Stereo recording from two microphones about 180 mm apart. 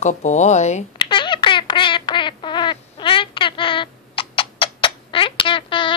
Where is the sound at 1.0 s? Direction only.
25° left (ahead or behind).